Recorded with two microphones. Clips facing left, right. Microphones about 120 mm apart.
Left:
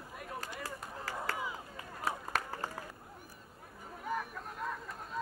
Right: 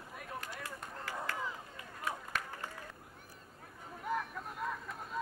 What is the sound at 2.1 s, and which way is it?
Run, 40° left (ahead or behind).